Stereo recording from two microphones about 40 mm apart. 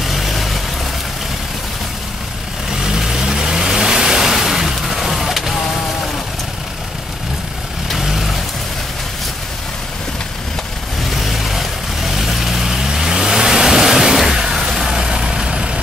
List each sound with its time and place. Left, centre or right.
0.0 s vehicle: centre
2.7 s vehicle: centre
8.0 s vehicle: centre
11.1 s vehicle: centre
14.4 s a sound: centre
14.7 s vehicle: centre